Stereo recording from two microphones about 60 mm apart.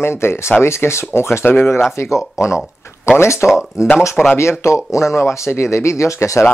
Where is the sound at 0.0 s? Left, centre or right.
Left.